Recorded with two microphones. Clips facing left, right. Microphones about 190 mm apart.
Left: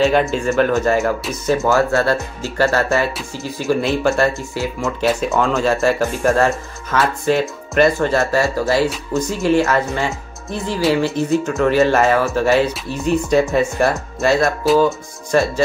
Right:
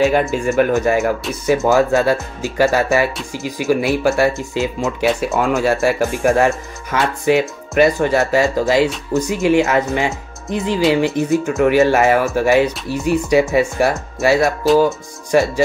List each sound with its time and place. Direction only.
0.5 s speech: 15° right (ahead or behind)
4.4 s speech: 20° right (ahead or behind)